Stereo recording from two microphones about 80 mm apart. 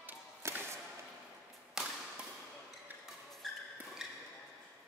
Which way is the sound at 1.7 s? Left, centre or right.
Centre.